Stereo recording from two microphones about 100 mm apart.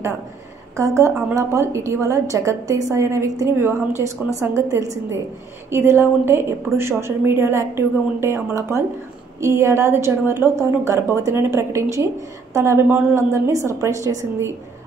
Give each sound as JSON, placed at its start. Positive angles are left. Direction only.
{"t": 0.7, "sound": "a woman's voice", "side_deg": -30}